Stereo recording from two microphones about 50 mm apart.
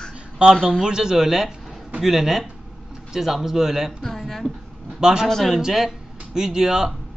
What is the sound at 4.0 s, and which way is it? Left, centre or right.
Speech, centre.